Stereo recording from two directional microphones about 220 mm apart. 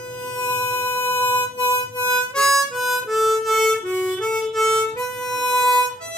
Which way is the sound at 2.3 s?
Centre (ahead or behind).